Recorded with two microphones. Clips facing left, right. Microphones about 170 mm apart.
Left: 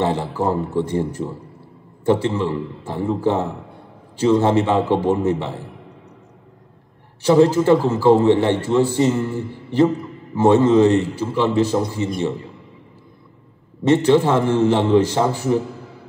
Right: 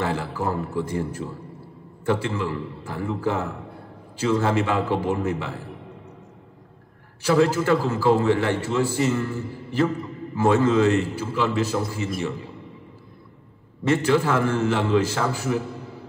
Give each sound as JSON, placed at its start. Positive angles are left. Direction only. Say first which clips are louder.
{"t": 0.0, "sound": "a man's voice", "louder": "left 5 dB", "side_deg": 25}
{"t": 7.2, "sound": "a man's voice", "louder": "left 6 dB", "side_deg": 25}
{"t": 13.8, "sound": "a man's voice", "louder": "left 6 dB", "side_deg": 25}